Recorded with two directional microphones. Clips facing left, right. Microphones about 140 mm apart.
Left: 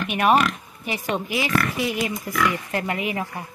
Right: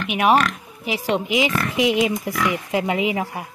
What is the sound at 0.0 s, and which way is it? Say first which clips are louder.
Speech: right 1 dB; 10° right (ahead or behind).